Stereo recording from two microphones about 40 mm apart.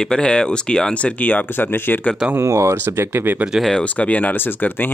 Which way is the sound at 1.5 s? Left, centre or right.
Left.